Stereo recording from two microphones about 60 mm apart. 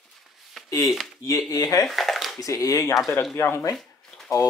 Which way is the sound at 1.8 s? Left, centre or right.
Centre.